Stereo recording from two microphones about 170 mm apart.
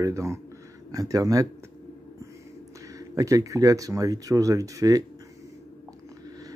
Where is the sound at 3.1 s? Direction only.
20° right (ahead or behind).